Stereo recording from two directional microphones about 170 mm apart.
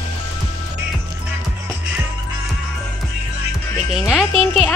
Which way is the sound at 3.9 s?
Centre (ahead or behind).